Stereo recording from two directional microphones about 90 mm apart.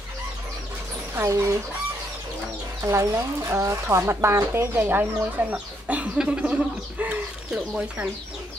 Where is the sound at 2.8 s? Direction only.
35° right (ahead or behind); by 8.1 s 10° right (ahead or behind).